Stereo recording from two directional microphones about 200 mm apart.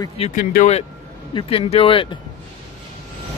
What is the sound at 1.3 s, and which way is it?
Speech, 25° left (ahead or behind).